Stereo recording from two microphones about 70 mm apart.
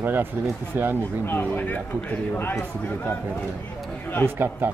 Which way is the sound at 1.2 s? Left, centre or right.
Left.